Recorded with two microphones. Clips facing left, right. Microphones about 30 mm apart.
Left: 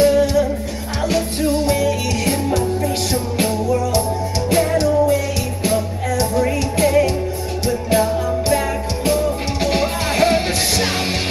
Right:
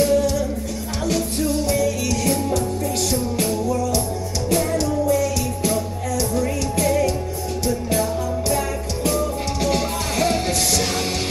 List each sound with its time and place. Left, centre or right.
0.0 s music: left
3.1 s music: left
9.0 s music: left